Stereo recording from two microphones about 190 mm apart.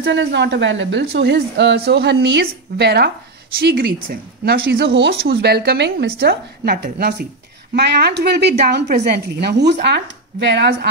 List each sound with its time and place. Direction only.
0.0 s a woman's voice: 75° right (ahead or behind)